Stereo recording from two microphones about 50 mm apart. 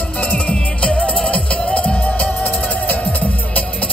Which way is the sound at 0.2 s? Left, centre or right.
Left.